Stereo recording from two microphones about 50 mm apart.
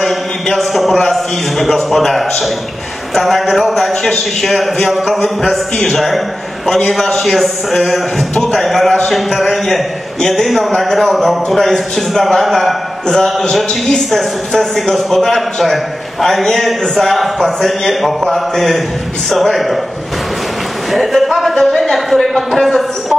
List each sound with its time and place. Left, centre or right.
0.0 s a man's voice: centre
13.1 s speech: centre
20.9 s speech: centre